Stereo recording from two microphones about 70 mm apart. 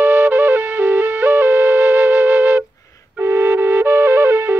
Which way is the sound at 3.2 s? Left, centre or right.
Right.